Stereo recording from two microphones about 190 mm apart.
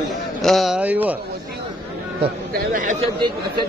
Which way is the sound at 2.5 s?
50° right (ahead or behind).